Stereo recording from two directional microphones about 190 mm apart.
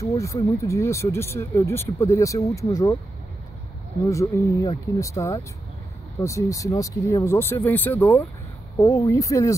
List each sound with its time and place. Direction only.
0.0 s speech: 15° left (ahead or behind)
4.1 s speech: 15° left (ahead or behind)